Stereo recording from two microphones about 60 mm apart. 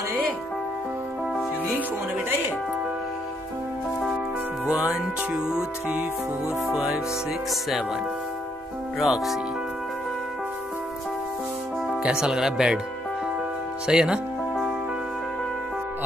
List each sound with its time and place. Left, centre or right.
4.6 s speech: centre
6.7 s speech: centre
9.0 s speech: centre
12.0 s speech: centre
13.8 s speech: centre